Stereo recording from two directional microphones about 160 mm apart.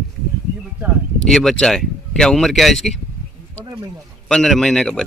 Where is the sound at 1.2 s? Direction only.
5° left (ahead or behind).